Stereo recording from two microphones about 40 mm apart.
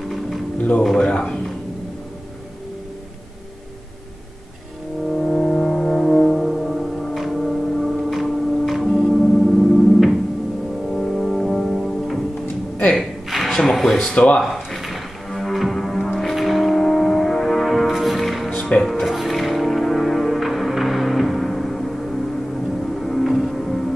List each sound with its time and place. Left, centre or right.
0.6 s speech: left
1.0 s speech: left
5.1 s music: centre
12.9 s a sound: centre
13.6 s music: centre
14.1 s speech: left
14.4 s music: centre
18.5 s music: left
18.8 s music: centre